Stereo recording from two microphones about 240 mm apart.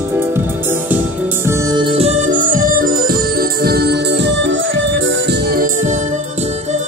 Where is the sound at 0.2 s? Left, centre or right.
Centre.